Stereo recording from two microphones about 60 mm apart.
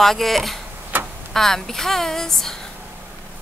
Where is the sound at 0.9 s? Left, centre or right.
Right.